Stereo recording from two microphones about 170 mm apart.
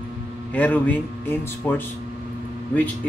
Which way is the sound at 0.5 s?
10° left (ahead or behind).